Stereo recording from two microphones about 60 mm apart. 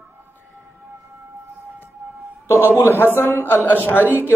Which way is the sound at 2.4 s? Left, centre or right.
Left.